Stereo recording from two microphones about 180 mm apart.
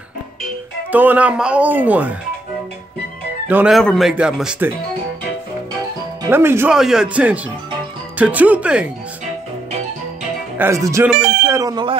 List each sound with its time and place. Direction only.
0.9 s speech: 10° right (ahead or behind)
3.4 s speech: 5° right (ahead or behind)
6.2 s speech: 15° right (ahead or behind)
10.6 s speech: 15° right (ahead or behind)